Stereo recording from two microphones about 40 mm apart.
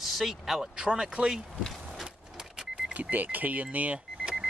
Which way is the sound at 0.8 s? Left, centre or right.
Centre.